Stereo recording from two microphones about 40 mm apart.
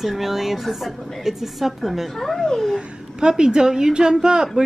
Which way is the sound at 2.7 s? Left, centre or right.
Centre.